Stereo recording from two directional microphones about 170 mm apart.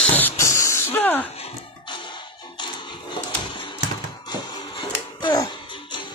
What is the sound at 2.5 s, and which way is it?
Music, 25° left (ahead or behind).